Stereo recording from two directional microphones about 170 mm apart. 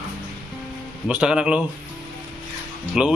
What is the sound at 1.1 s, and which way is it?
Speech, 5° right (ahead or behind).